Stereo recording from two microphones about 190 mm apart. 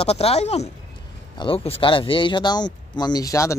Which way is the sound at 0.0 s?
30° left (ahead or behind).